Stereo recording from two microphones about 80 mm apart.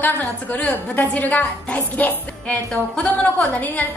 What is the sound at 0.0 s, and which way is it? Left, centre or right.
A woman's voice, left.